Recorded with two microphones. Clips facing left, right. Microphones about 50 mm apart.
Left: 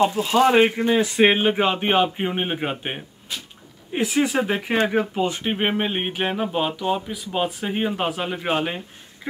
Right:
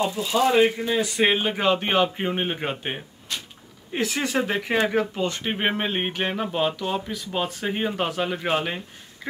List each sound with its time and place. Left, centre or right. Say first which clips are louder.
0.0 s speech: left 4 dB; left; by 9.3 s centre